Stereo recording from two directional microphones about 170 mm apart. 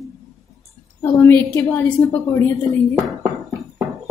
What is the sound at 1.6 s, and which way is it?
Speech, 15° left (ahead or behind).